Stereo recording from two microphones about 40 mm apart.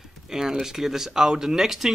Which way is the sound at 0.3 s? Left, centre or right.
Centre.